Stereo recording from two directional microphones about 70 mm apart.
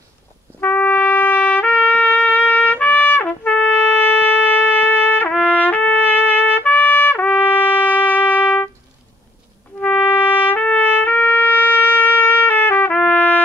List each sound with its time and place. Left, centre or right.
0.6 s trumpet: left
9.8 s trumpet: left